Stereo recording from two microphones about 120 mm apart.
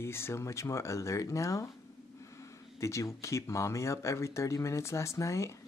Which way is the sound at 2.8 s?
25° left (ahead or behind).